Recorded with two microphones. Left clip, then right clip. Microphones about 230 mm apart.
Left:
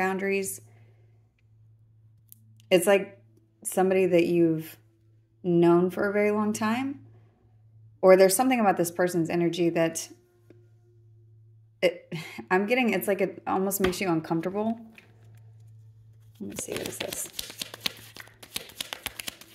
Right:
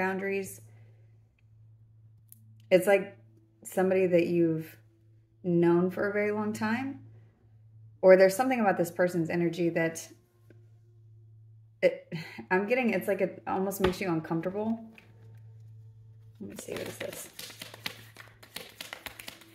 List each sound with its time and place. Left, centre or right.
0.0 s a woman's voice: left
2.5 s a sound: left
3.6 s a woman's voice: left
8.0 s a woman's voice: left
11.8 s a woman's voice: left
16.3 s speech: left
17.6 s a sound: left